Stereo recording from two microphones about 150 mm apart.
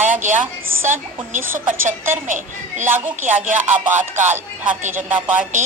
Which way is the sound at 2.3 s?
55° right (ahead or behind).